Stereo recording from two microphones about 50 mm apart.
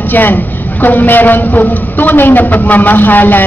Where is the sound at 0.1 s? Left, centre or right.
Left.